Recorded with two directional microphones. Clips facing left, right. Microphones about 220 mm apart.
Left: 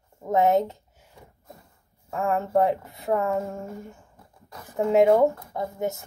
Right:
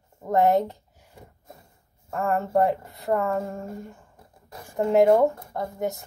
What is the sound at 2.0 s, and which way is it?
Speech, centre (ahead or behind).